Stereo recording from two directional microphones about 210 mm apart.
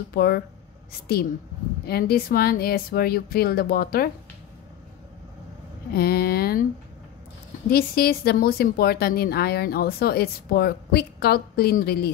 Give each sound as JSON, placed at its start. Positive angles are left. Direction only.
{"t": 0.1, "sound": "a woman's voice", "side_deg": 45}
{"t": 1.9, "sound": "a woman's voice", "side_deg": 45}
{"t": 5.9, "sound": "speech", "side_deg": 45}
{"t": 7.7, "sound": "a woman's voice", "side_deg": 45}